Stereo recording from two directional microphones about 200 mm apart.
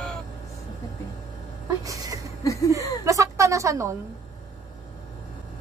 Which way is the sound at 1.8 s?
15° right (ahead or behind).